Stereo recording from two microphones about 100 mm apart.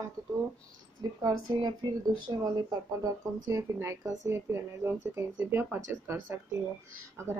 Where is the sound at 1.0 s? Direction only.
40° right (ahead or behind).